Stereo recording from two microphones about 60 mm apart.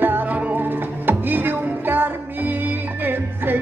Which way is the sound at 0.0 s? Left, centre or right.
Right.